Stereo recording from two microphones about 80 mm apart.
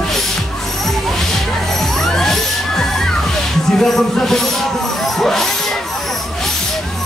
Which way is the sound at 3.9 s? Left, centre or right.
Centre.